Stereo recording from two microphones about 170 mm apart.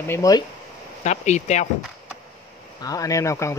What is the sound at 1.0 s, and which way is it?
Speech, 40° left (ahead or behind).